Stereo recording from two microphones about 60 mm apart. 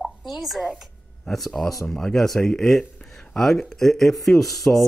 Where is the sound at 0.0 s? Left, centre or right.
Centre.